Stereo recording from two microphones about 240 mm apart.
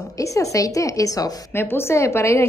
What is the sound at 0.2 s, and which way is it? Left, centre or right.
A woman's voice, centre.